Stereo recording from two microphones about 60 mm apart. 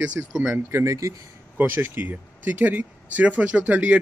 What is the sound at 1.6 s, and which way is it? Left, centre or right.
Speech, right.